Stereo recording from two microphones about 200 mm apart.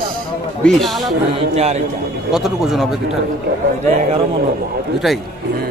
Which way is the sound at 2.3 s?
Centre (ahead or behind).